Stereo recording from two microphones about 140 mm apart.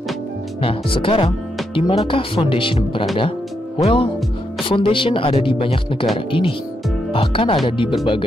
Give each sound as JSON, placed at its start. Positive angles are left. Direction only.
{"t": 0.6, "sound": "speech", "side_deg": 40}
{"t": 3.2, "sound": "music", "side_deg": 40}
{"t": 4.6, "sound": "speech", "side_deg": 40}